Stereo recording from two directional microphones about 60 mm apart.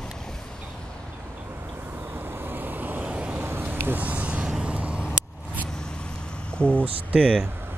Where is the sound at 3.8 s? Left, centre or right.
Right.